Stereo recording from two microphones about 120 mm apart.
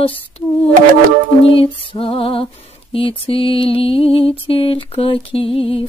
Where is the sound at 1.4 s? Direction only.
50° left (ahead or behind).